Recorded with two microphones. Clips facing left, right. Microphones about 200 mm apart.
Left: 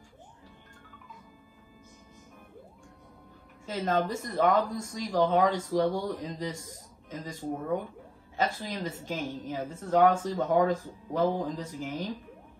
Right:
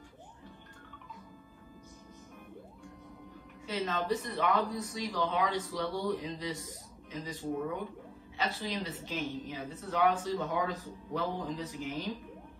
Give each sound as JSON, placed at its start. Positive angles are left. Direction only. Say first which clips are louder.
{"t": 3.6, "sound": "speech", "louder": "left 4 dB", "side_deg": 45}